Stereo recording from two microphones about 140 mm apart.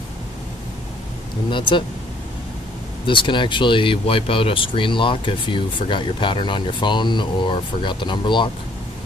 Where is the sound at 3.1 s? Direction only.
35° left (ahead or behind).